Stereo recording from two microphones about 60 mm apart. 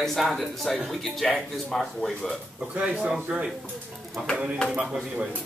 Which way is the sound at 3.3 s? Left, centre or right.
Centre.